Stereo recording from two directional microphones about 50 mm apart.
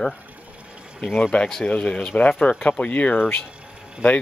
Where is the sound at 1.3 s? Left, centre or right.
Left.